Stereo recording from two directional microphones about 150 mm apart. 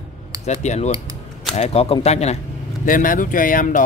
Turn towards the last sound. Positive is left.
turn(degrees=65)  # may be behind; listen again after turning